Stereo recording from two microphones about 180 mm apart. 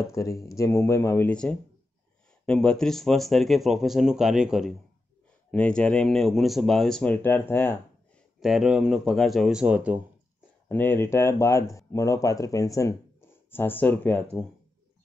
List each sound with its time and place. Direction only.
0.0 s speech: 15° left (ahead or behind)
8.4 s speech: centre (ahead or behind)
10.7 s speech: 10° left (ahead or behind)